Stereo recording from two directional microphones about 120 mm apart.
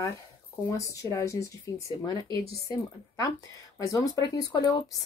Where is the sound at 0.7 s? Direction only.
25° left (ahead or behind).